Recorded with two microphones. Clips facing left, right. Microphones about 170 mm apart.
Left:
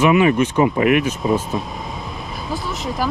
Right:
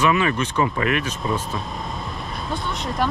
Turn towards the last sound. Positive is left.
turn(degrees=0)  # may be behind; listen again after turning